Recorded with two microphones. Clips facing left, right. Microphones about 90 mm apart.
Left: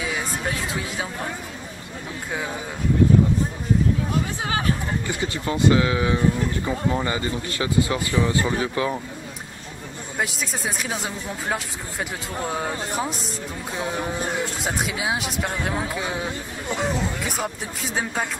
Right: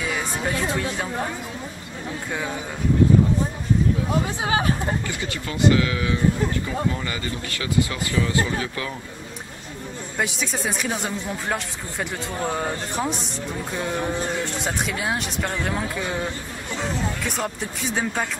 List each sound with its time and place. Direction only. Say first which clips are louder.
0.7 s speech: right 3 dB; 5° left (ahead or behind)
4.5 s speech: right 3 dB; 20° right (ahead or behind)
5.0 s speech: left 3 dB; 20° left (ahead or behind)
10.1 s speech: right 1 dB; centre (ahead or behind)